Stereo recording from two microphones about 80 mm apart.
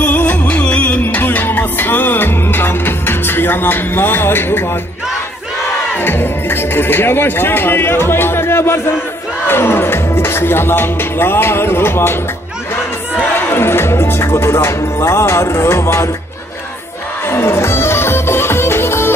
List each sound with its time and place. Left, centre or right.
0.0 s music: centre
5.9 s speech: left
9.5 s music: left
13.2 s music: left
17.3 s music: left